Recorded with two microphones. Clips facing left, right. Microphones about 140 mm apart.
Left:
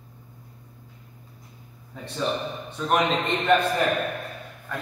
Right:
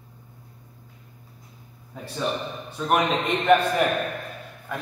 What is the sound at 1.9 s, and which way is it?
A man's voice, 5° right (ahead or behind).